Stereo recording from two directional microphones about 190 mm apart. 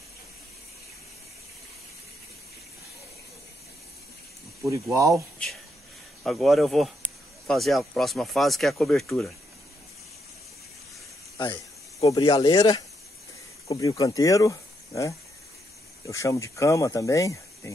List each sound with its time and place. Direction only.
4.6 s speech: 15° right (ahead or behind)
6.2 s speech: centre (ahead or behind)
11.3 s speech: 25° left (ahead or behind)